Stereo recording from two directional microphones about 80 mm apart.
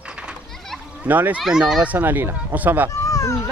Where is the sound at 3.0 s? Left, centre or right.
Left.